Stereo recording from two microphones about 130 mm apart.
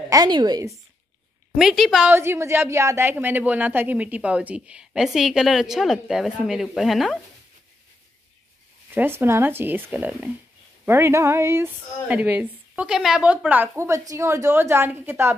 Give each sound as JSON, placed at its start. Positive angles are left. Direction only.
{"t": 0.1, "sound": "a woman's voice", "side_deg": -30}
{"t": 1.6, "sound": "a woman's voice", "side_deg": -5}
{"t": 2.0, "sound": "a woman's voice", "side_deg": -20}
{"t": 8.9, "sound": "a woman's voice", "side_deg": -15}